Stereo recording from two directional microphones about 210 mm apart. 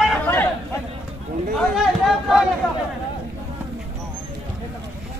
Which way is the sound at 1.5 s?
Centre (ahead or behind).